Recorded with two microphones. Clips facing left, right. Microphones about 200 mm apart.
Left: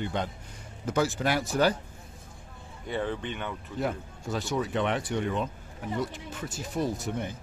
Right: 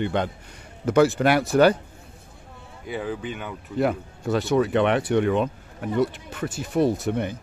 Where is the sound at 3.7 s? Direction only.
65° right (ahead or behind).